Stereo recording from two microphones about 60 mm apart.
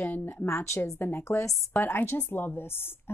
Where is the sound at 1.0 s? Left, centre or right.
Left.